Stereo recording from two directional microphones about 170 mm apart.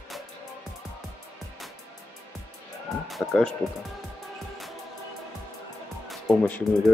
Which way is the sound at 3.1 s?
Centre (ahead or behind).